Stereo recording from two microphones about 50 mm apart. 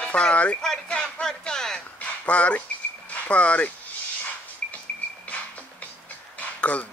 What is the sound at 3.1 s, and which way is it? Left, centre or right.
Speech, left.